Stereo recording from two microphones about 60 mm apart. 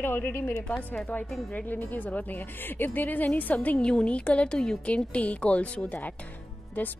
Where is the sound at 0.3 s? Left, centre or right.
Left.